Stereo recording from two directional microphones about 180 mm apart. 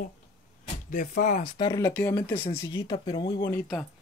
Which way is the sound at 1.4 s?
25° left (ahead or behind).